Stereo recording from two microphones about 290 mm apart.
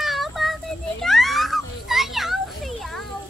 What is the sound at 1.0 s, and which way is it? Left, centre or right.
A child's voice, centre.